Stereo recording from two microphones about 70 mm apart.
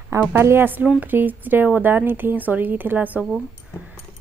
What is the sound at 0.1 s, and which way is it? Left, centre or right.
A woman's voice, right.